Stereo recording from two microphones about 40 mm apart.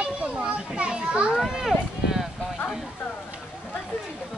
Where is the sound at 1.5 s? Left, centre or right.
Centre.